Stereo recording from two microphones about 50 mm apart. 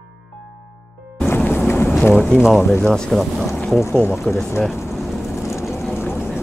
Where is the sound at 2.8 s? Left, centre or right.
Centre.